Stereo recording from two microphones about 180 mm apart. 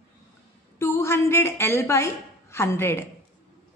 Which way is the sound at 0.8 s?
15° left (ahead or behind).